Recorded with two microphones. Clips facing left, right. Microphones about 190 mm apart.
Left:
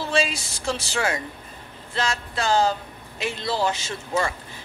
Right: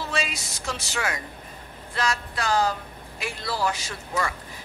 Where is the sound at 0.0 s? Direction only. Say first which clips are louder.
Left 6 dB; 30° left (ahead or behind).